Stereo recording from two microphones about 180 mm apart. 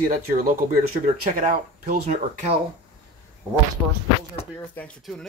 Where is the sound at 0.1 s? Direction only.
50° right (ahead or behind).